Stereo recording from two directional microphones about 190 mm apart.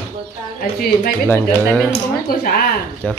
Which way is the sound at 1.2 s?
10° left (ahead or behind).